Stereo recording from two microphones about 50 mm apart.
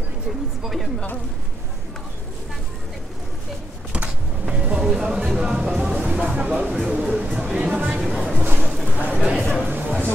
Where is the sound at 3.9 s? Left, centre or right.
Right.